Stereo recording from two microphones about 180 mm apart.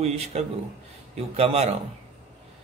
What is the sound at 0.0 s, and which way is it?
A man's voice, 35° right (ahead or behind).